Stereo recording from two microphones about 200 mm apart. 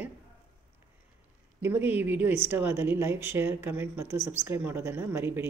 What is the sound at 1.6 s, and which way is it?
A woman's voice, 10° right (ahead or behind).